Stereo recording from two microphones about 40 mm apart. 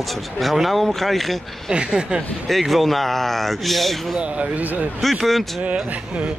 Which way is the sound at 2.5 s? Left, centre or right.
Centre.